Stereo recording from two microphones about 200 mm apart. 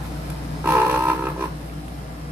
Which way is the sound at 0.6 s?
10° right (ahead or behind).